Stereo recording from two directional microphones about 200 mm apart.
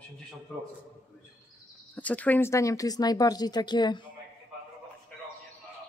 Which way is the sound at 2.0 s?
5° left (ahead or behind).